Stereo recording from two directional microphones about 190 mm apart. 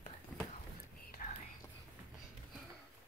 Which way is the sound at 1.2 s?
45° left (ahead or behind).